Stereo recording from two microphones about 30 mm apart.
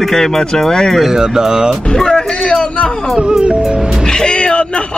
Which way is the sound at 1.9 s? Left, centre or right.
Left.